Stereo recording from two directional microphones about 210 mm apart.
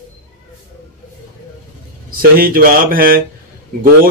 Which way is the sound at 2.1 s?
45° right (ahead or behind).